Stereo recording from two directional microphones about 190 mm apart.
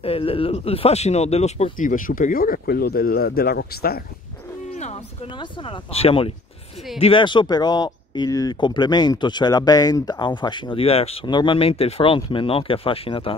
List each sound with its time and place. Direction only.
0.0 s speech: 30° left (ahead or behind); by 4.0 s 55° left (ahead or behind)
4.7 s a sound: 35° left (ahead or behind)
5.3 s speech: 25° left (ahead or behind)